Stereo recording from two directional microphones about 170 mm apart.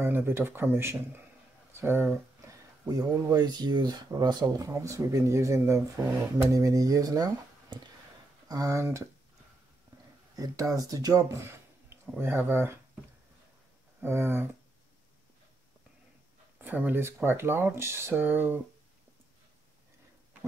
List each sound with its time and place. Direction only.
0.0 s speech: 15° right (ahead or behind)
10.3 s speech: 20° right (ahead or behind)
14.0 s speech: 15° right (ahead or behind)
16.5 s speech: 10° right (ahead or behind)